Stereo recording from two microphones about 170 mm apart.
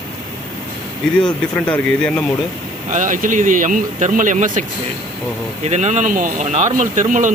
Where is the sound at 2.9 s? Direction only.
50° right (ahead or behind).